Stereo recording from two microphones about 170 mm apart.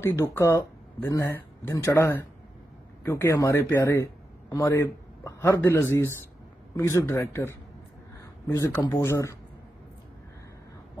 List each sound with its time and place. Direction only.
0.0 s a man's voice: 15° left (ahead or behind)